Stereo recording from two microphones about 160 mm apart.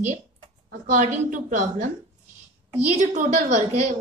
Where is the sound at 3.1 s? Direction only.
50° right (ahead or behind).